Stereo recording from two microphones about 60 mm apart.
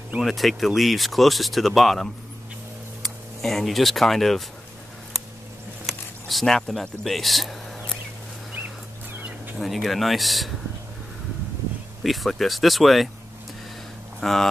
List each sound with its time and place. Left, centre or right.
0.2 s speech: centre
5.9 s speech: centre
8.5 s bird: right
9.6 s speech: centre
12.0 s speech: centre
14.2 s speech: centre